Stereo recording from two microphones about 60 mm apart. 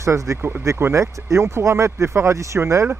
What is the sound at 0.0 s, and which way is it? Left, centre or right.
Speech, right.